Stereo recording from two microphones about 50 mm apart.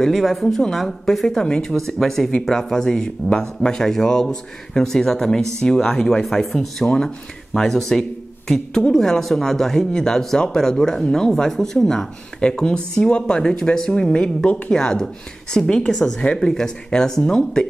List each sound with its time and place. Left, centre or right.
0.0 s speech: centre